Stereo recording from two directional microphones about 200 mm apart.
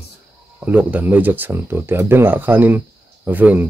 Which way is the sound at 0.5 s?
10° right (ahead or behind).